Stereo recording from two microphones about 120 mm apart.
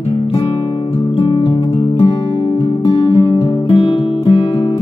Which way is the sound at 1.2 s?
50° left (ahead or behind).